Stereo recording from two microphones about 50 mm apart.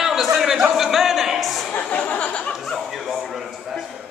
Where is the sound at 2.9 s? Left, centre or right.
Centre.